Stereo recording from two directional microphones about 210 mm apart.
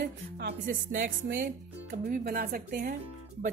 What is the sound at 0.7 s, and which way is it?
Speech, 40° right (ahead or behind).